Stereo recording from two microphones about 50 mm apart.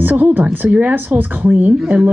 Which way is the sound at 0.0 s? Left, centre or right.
Right.